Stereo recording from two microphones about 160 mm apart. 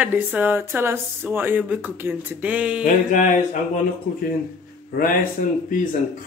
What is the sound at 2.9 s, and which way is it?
Speech, 50° left (ahead or behind).